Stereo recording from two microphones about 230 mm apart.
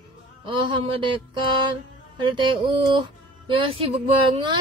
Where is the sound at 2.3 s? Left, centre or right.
Right.